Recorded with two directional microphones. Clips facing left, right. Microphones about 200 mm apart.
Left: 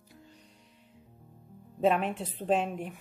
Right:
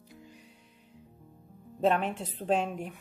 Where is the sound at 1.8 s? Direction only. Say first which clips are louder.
Left 1 dB; 5° left (ahead or behind).